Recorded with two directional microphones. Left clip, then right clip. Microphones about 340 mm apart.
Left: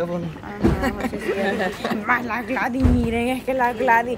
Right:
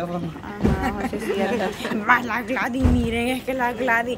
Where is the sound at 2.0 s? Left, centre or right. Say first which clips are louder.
Right 3 dB; centre.